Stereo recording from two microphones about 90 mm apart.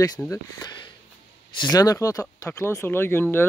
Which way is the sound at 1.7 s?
40° left (ahead or behind).